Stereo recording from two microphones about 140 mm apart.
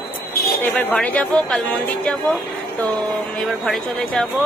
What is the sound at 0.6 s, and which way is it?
Speech, 15° left (ahead or behind).